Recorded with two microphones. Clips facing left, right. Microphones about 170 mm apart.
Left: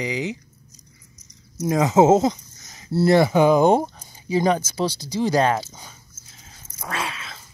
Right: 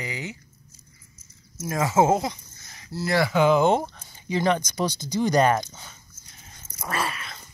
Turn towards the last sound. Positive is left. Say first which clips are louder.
# right 1 dB
turn(degrees=0)  # may be behind; listen again after turning